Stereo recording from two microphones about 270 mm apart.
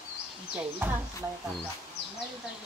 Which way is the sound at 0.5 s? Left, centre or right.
Centre.